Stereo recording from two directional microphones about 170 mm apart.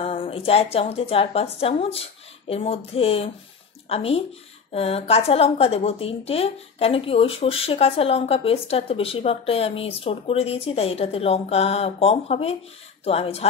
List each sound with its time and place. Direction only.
0.0 s a woman's voice: 30° left (ahead or behind)